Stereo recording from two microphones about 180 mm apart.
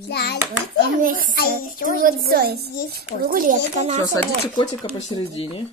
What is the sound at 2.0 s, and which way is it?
A woman's voice, 50° right (ahead or behind).